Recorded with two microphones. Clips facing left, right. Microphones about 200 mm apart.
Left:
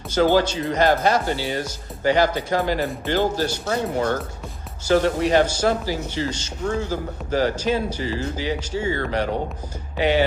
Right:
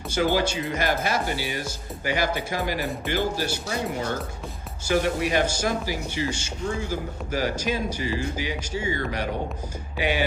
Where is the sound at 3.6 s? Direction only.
55° left (ahead or behind).